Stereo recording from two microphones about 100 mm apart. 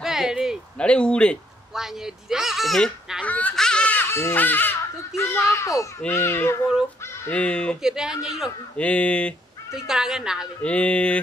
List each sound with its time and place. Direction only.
0.0 s a sound: 5° right (ahead or behind)
0.7 s speech: 10° left (ahead or behind)
1.8 s speech: 5° right (ahead or behind)
3.3 s laughter: 15° left (ahead or behind)
3.5 s speech: 10° left (ahead or behind); by 6.6 s 25° left (ahead or behind)
7.2 s speech: 10° left (ahead or behind)
7.8 s speech: 5° right (ahead or behind)
8.7 s speech: 15° left (ahead or behind)
9.7 s speech: 5° right (ahead or behind)
10.6 s speech: 10° left (ahead or behind)